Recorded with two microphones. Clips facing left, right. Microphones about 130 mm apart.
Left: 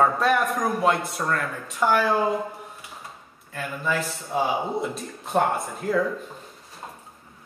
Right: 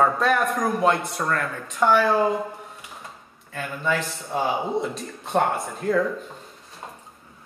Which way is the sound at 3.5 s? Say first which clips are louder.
Right 1 dB; centre (ahead or behind).